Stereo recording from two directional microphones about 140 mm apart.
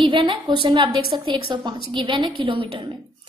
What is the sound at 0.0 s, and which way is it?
A woman's voice, 35° right (ahead or behind).